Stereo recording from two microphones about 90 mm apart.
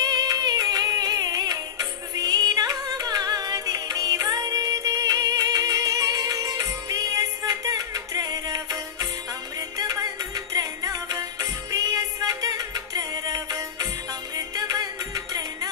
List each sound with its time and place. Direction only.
0.0 s music: 45° right (ahead or behind)